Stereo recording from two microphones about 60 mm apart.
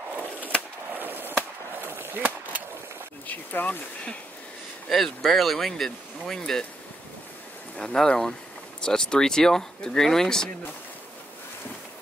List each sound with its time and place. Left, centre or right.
0.9 s a sound: right
3.3 s speech: left
4.8 s speech: centre
7.7 s speech: centre